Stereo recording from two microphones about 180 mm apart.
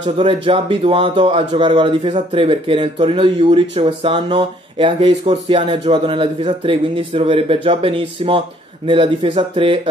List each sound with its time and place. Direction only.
0.2 s speech: 30° right (ahead or behind)